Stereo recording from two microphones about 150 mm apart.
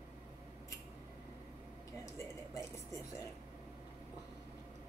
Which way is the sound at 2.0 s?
20° left (ahead or behind).